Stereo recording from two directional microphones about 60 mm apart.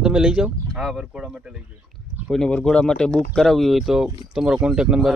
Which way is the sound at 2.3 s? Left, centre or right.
Centre.